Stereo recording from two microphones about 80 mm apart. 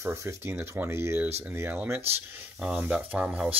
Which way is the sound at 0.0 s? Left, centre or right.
Right.